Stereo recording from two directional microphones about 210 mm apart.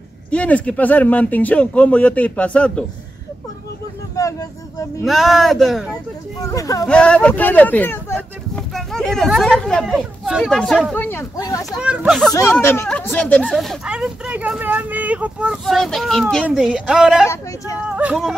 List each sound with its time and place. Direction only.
0.3 s speech: 5° left (ahead or behind)
4.2 s vehicle: 15° left (ahead or behind)
5.0 s speech: centre (ahead or behind)
6.5 s speech: 15° left (ahead or behind)
6.9 s speech: 5° left (ahead or behind)
11.8 s speech: 5° right (ahead or behind)
12.3 s speech: 15° left (ahead or behind); by 17.3 s 5° right (ahead or behind)
17.3 s speech: 15° left (ahead or behind)
17.8 s speech: 5° right (ahead or behind)